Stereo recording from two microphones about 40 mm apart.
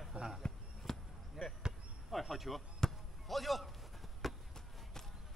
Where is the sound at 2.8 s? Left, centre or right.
Centre.